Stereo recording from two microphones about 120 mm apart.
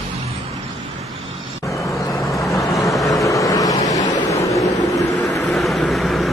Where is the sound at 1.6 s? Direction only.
25° left (ahead or behind).